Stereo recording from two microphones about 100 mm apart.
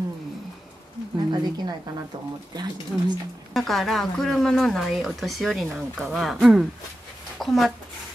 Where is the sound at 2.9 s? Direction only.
10° left (ahead or behind).